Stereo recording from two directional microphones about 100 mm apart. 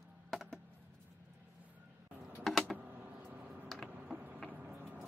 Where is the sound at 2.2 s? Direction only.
Centre (ahead or behind).